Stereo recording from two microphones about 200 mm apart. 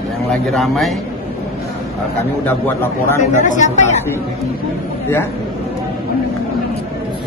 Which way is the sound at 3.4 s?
35° left (ahead or behind).